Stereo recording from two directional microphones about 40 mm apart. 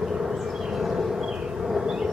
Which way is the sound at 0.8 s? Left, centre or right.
Centre.